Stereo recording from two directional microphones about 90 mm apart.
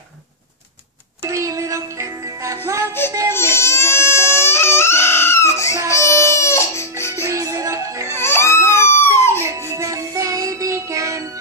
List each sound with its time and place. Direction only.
1.2 s music: 35° right (ahead or behind)
3.3 s music: 30° left (ahead or behind)
7.2 s music: 35° right (ahead or behind)
8.1 s music: 25° left (ahead or behind)
8.7 s a sound: 30° left (ahead or behind)
9.4 s music: 30° right (ahead or behind)